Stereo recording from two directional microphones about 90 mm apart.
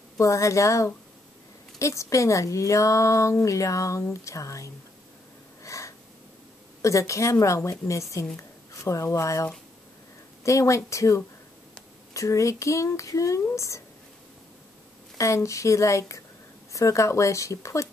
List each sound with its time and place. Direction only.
0.2 s speech: 35° left (ahead or behind)
5.6 s wheeze: 35° left (ahead or behind)
6.8 s speech: 35° left (ahead or behind)
15.1 s speech: 35° left (ahead or behind)